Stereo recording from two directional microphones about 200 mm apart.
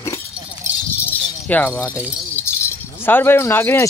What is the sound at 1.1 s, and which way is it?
Keys jangling, 10° left (ahead or behind).